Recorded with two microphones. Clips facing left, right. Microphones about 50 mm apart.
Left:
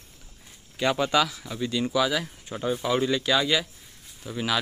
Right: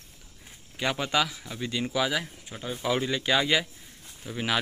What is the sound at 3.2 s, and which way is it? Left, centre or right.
Speech, right.